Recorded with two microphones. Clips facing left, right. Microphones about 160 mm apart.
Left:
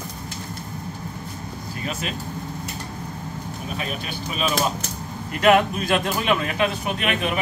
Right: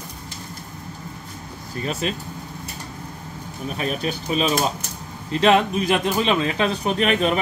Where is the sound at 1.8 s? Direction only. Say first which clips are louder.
Right 5 dB; 35° right (ahead or behind).